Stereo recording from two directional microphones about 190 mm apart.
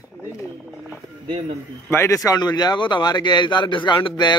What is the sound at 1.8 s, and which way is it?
A man's voice, 15° left (ahead or behind).